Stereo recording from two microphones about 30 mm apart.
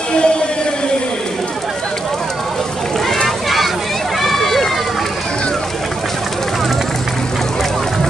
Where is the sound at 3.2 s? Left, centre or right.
Centre.